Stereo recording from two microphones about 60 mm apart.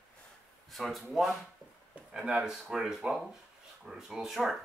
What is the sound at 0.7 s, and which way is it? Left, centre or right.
Speech, centre.